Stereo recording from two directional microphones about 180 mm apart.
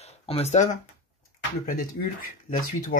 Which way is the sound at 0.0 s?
35° left (ahead or behind).